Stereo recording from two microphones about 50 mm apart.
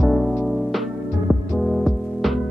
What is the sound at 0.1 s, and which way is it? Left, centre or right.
Music, centre.